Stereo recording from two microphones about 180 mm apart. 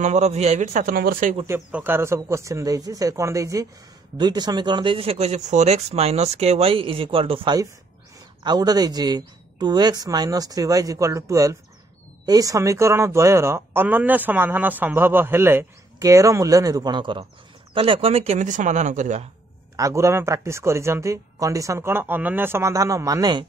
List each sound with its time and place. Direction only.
0.0 s a man's voice: 40° right (ahead or behind); by 1.3 s 55° right (ahead or behind)
1.4 s a woman's voice: 10° right (ahead or behind); by 19.2 s 40° right (ahead or behind)
19.8 s speech: 15° right (ahead or behind)